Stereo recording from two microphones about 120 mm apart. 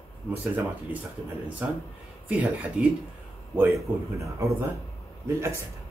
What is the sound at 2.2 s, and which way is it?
Speech, 10° right (ahead or behind).